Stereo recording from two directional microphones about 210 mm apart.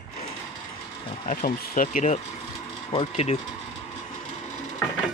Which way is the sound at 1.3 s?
40° left (ahead or behind).